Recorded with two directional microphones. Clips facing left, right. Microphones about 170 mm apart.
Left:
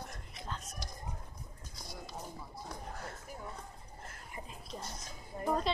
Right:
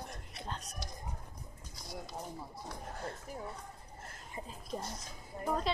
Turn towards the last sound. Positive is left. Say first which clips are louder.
# left 1 dB
turn(degrees=5)  # may be behind; listen again after turning